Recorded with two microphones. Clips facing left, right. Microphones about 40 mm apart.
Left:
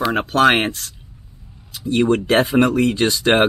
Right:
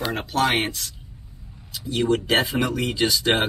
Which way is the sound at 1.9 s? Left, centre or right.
Left.